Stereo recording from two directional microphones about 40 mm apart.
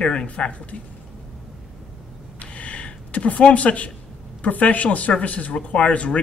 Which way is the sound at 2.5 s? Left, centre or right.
Left.